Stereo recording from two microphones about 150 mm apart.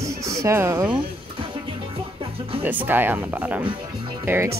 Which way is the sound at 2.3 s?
40° right (ahead or behind).